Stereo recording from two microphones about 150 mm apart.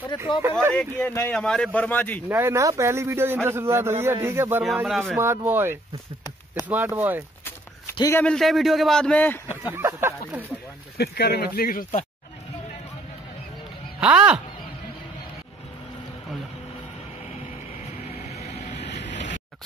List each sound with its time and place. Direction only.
0.4 s a man's voice: 15° right (ahead or behind)
0.7 s a man's voice: 10° left (ahead or behind)
2.2 s a man's voice: 15° right (ahead or behind)
8.1 s a man's voice: 10° left (ahead or behind)
9.5 s a man's voice: 15° right (ahead or behind)
11.0 s speech: 90° left
13.9 s speech: 10° right (ahead or behind)
17.8 s vehicle: 45° left (ahead or behind)